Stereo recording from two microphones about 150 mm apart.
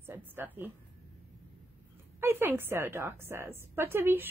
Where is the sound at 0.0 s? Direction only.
15° right (ahead or behind).